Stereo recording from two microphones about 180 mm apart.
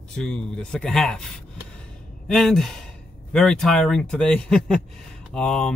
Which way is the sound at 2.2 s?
Centre (ahead or behind).